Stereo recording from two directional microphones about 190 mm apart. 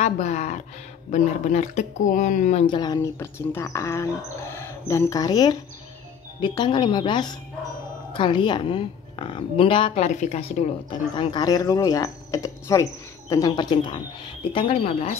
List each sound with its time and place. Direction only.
0.0 s speech: 35° left (ahead or behind)
2.6 s a woman's voice: 25° left (ahead or behind)